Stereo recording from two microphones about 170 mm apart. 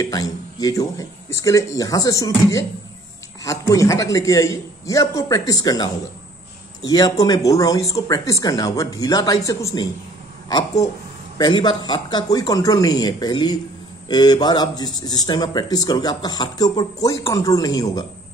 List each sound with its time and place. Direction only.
0.0 s a man's voice: 20° left (ahead or behind)